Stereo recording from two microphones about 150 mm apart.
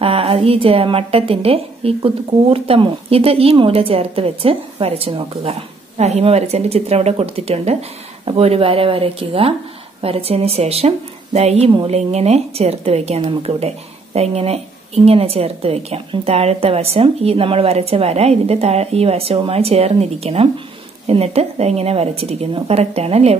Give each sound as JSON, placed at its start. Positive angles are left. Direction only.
{"t": 0.0, "sound": "a woman's voice", "side_deg": -40}